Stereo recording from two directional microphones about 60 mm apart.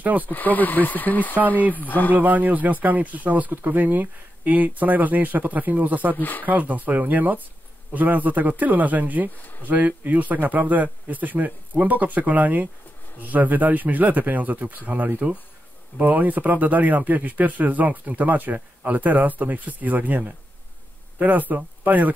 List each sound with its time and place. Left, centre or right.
0.2 s speech: left
2.1 s speech: right
6.1 s speech: left
6.4 s speech: right
9.4 s speech: left
9.7 s speech: right